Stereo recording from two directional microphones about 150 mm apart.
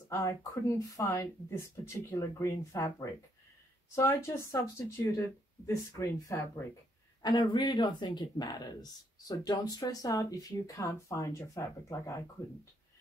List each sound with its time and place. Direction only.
0.1 s speech: 20° left (ahead or behind)